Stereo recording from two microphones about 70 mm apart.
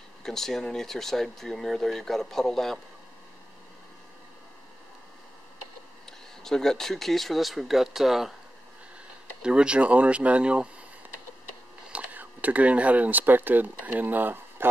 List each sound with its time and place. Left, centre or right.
0.2 s speech: centre
6.0 s speech: centre
9.4 s speech: centre
11.9 s speech: right